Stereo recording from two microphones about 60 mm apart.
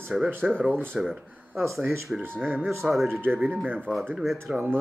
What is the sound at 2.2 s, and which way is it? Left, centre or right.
Speech, right.